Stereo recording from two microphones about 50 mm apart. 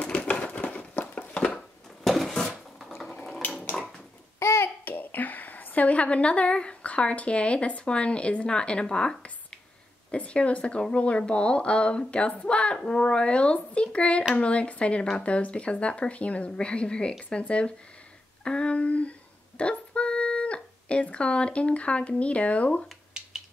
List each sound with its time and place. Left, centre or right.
0.0 s a sound: left
2.0 s dishes: centre
2.8 s sewing machine: centre
3.4 s dishes: left
4.4 s babbling: left
4.8 s a woman's voice: left
18.4 s a sound: centre